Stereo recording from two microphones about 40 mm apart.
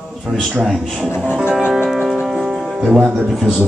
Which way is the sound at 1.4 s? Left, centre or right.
Right.